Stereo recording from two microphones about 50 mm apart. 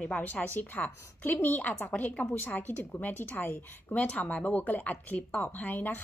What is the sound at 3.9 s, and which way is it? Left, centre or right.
Speech, left.